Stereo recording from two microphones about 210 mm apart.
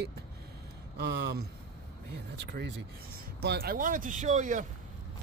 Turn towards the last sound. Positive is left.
turn(degrees=-35)  # may be behind; listen again after turning